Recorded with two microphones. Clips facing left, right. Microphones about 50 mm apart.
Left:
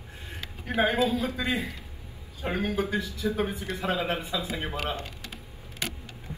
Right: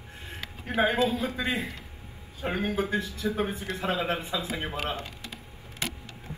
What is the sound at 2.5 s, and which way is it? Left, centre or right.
Speech, right.